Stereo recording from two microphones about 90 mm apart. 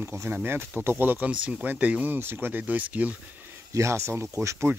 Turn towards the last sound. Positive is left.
turn(degrees=-25)  # may be behind; listen again after turning